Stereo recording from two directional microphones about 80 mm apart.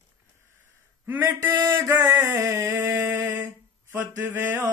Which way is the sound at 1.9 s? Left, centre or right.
Right.